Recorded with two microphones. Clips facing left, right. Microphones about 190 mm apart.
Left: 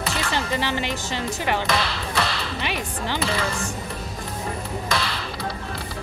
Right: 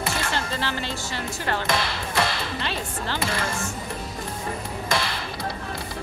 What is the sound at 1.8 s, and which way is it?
Ping, 15° right (ahead or behind).